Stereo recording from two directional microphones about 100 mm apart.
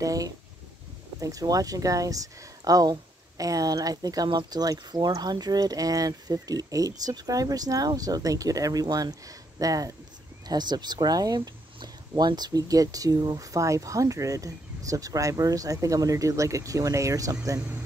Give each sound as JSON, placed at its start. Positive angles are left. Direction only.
{"t": 0.0, "sound": "speech", "side_deg": -35}